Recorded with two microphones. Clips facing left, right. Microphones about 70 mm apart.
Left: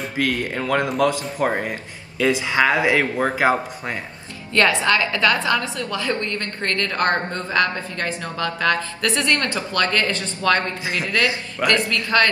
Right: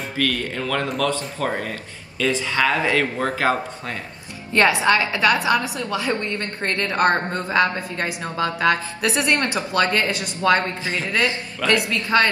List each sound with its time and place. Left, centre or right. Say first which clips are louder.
0.2 s speech: left 1 dB; centre
4.5 s a woman's voice: right 1 dB; right